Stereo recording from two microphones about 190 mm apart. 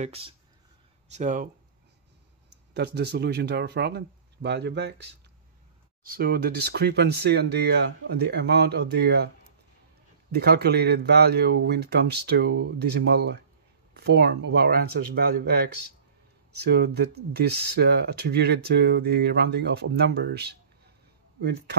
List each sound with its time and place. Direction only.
0.0 s speech: 30° right (ahead or behind)
2.7 s speech: 60° right (ahead or behind)